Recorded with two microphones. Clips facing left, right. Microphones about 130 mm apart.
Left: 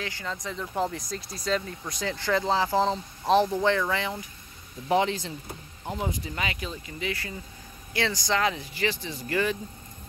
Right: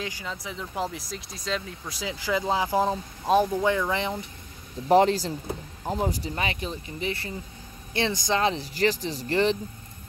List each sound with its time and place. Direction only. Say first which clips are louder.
0.0 s speech: even; 10° right (ahead or behind)
4.8 s speech: right 5 dB; 40° right (ahead or behind)